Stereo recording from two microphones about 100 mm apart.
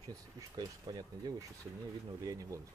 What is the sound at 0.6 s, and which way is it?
Speech, 40° right (ahead or behind).